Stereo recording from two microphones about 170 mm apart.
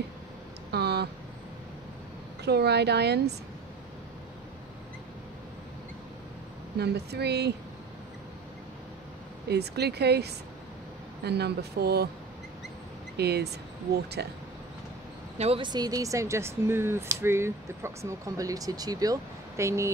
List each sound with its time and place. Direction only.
0.7 s a sound: 75° right (ahead or behind)
2.4 s a woman's voice: 75° right (ahead or behind)
6.8 s a woman's voice: 75° right (ahead or behind)
9.5 s a woman's voice: 75° right (ahead or behind)
13.2 s a woman's voice: 70° right (ahead or behind)
15.3 s speech: 35° right (ahead or behind); by 19.9 s 15° right (ahead or behind)